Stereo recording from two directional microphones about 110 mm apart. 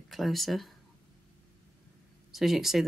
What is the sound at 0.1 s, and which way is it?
Speech, centre (ahead or behind).